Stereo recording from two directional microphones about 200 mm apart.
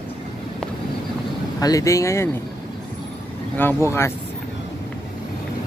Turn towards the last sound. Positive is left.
turn(degrees=15)  # may be behind; listen again after turning